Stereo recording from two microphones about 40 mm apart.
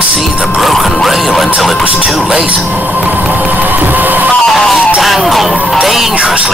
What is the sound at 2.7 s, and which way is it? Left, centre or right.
Music, right.